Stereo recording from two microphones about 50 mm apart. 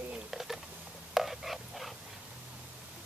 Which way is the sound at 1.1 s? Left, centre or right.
Centre.